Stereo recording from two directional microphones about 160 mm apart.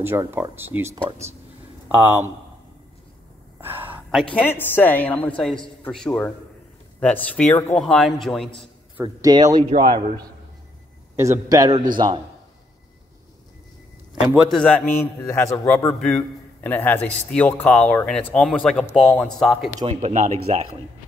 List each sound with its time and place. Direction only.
0.0 s speech: 15° right (ahead or behind)
3.6 s a sound: 10° right (ahead or behind)
4.1 s a woman's voice: 5° left (ahead or behind)
9.0 s a man's voice: 25° right (ahead or behind)
11.1 s a man's voice: 20° right (ahead or behind)
14.2 s speech: centre (ahead or behind)
15.2 s a woman's voice: 15° left (ahead or behind)
16.0 s a man's voice: 5° left (ahead or behind)
19.9 s speech: 45° right (ahead or behind)